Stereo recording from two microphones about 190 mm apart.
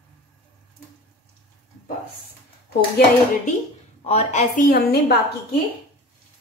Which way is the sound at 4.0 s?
35° left (ahead or behind).